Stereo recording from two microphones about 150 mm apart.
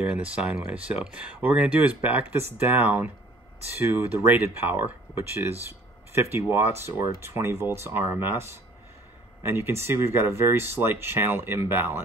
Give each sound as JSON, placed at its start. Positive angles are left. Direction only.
{"t": 0.0, "sound": "speech", "side_deg": -10}